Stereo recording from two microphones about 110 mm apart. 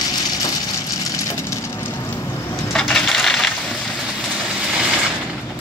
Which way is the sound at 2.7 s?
5° left (ahead or behind).